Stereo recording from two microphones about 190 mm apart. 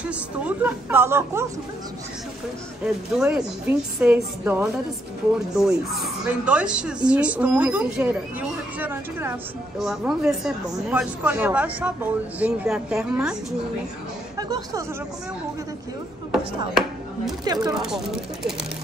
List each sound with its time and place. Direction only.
0.0 s a woman's voice: 5° right (ahead or behind)
2.8 s a woman's voice: 5° right (ahead or behind)
14.3 s speech: 20° right (ahead or behind)
17.5 s speech: 20° right (ahead or behind)
17.7 s speech: centre (ahead or behind)